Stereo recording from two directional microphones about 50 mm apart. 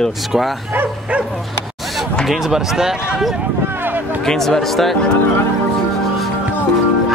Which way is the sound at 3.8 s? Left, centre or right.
Right.